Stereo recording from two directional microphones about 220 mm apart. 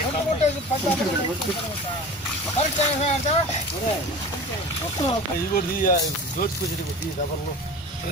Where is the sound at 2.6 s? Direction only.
30° left (ahead or behind).